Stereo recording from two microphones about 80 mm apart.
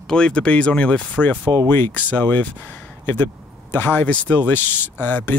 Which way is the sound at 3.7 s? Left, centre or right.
Left.